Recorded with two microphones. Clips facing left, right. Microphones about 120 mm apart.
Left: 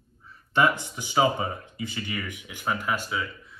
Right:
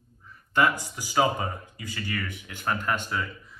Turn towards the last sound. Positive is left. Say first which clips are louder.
# even
turn(degrees=5)  # may be behind; listen again after turning